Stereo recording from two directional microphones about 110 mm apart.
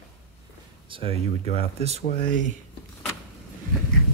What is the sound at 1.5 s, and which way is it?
Speech, 70° right (ahead or behind).